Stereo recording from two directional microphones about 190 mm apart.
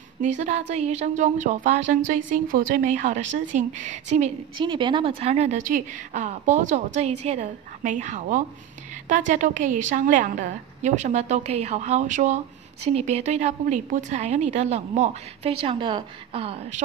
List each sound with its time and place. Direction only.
0.2 s a woman's voice: 35° right (ahead or behind)
4.6 s a woman's voice: 25° right (ahead or behind)